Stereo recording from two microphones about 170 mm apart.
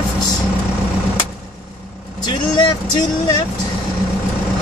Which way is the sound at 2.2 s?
25° left (ahead or behind).